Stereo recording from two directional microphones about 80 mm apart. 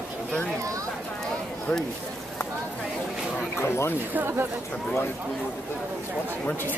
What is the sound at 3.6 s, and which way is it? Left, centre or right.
Speech, left.